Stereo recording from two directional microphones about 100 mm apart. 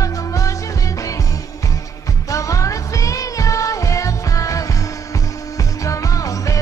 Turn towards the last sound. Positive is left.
turn(degrees=35)  # may be behind; listen again after turning